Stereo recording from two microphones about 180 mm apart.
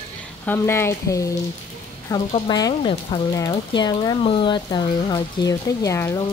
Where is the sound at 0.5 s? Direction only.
15° left (ahead or behind).